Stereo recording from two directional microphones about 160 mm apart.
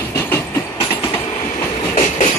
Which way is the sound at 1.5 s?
45° left (ahead or behind).